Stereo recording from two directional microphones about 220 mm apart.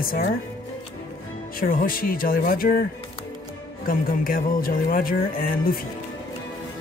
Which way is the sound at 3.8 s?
40° left (ahead or behind).